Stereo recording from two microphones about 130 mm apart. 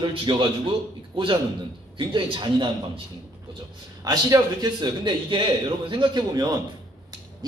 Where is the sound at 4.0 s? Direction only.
25° right (ahead or behind).